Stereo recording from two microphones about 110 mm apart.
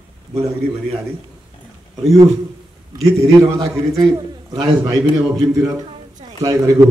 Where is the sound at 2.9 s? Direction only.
30° right (ahead or behind).